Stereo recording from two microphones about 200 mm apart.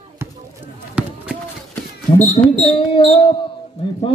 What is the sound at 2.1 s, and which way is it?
A man's voice, 35° left (ahead or behind).